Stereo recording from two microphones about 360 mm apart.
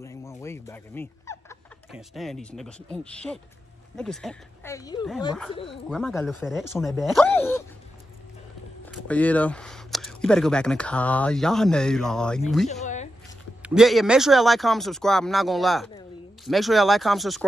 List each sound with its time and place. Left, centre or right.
0.0 s speech: centre
8.9 s speech: centre
12.8 s a sound: centre
13.6 s speech: centre